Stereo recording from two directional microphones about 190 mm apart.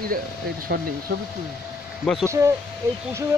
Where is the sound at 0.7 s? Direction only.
65° right (ahead or behind).